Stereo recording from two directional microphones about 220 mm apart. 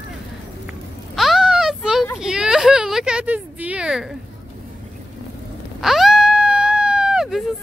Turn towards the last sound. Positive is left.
turn(degrees=-5)  # may be behind; listen again after turning